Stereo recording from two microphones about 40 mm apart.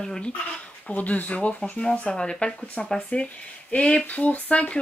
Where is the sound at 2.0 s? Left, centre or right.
Left.